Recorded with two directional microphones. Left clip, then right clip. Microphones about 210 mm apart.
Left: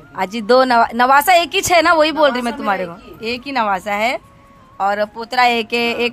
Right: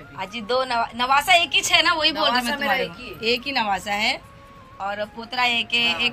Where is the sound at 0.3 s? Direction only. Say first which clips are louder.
Left 11 dB; 25° left (ahead or behind).